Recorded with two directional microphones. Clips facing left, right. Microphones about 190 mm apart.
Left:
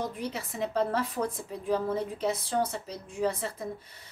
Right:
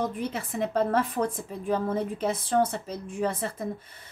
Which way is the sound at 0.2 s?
50° right (ahead or behind).